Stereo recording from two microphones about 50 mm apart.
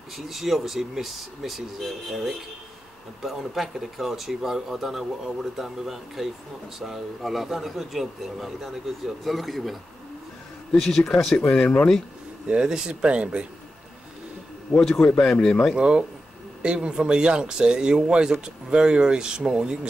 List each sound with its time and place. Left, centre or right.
0.1 s speech: centre
10.8 s speech: centre
12.4 s speech: centre
14.7 s speech: centre
15.7 s speech: centre